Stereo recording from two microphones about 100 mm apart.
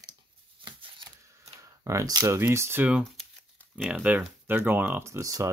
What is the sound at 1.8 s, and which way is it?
Speech, 30° right (ahead or behind).